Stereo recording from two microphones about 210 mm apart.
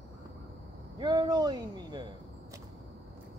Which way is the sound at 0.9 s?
20° right (ahead or behind).